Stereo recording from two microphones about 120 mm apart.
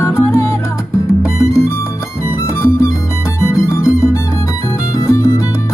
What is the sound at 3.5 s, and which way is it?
Music, 25° left (ahead or behind).